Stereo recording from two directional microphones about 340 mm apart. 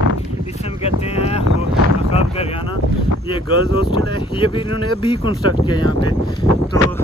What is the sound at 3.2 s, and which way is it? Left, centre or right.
Speech, centre.